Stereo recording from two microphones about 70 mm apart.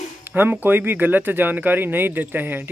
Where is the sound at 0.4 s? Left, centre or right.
Right.